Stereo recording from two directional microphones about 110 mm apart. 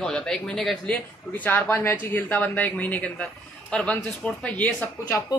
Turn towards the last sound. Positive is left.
turn(degrees=15)  # may be behind; listen again after turning